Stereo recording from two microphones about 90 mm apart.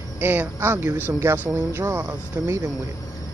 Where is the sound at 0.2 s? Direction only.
20° right (ahead or behind).